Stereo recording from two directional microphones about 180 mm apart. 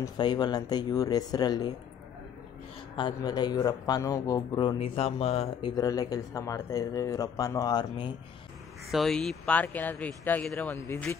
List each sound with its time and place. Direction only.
0.0 s speech: 25° left (ahead or behind)
3.0 s speech: 25° left (ahead or behind)
8.9 s speech: centre (ahead or behind)